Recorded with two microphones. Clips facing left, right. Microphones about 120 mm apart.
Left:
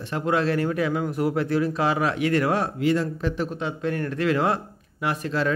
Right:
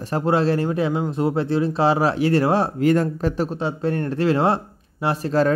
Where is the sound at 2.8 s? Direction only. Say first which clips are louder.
Right 4 dB; 45° right (ahead or behind).